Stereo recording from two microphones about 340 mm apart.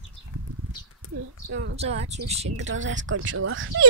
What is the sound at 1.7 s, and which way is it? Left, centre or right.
Speech, centre.